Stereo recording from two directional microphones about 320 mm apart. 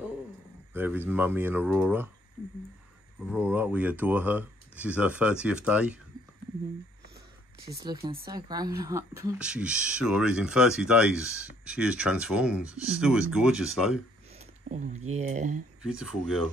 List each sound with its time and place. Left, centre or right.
0.7 s speech: centre
3.3 s speech: centre
8.1 s speech: centre
14.7 s speech: right
15.8 s speech: centre